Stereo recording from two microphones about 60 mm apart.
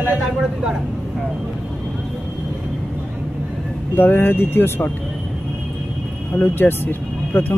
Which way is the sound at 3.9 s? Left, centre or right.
Left.